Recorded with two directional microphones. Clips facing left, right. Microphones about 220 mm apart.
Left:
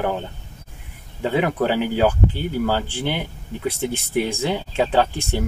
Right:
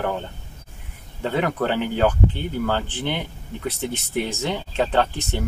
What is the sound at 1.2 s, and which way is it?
Speech, 5° left (ahead or behind).